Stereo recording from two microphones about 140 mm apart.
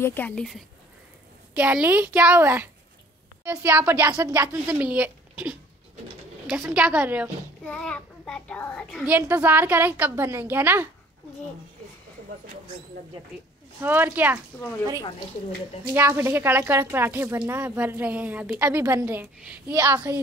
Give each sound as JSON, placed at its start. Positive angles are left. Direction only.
{"t": 0.0, "sound": "a child's voice", "side_deg": 15}
{"t": 1.5, "sound": "speech", "side_deg": -10}
{"t": 6.7, "sound": "speech", "side_deg": -5}
{"t": 7.6, "sound": "a child's voice", "side_deg": 5}
{"t": 9.0, "sound": "speech", "side_deg": -10}
{"t": 13.7, "sound": "speech", "side_deg": -15}
{"t": 16.0, "sound": "a woman's voice", "side_deg": -15}